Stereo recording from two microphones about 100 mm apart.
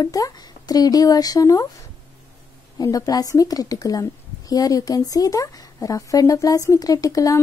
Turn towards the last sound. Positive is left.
turn(degrees=35)  # may be behind; listen again after turning